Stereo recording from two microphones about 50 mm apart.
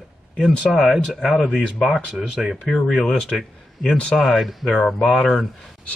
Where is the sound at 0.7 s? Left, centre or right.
Centre.